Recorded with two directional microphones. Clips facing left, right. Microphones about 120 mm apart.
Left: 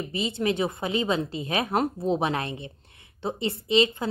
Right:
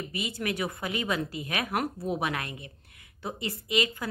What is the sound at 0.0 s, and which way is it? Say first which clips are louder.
A woman's voice: left 6 dB; 25° left (ahead or behind).